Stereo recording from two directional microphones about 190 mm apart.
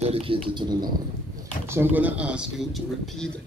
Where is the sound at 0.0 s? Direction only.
30° right (ahead or behind).